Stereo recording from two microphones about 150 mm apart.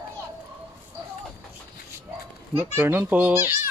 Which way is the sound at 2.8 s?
15° right (ahead or behind).